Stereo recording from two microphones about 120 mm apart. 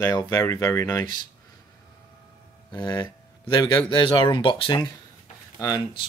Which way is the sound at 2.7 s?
35° left (ahead or behind).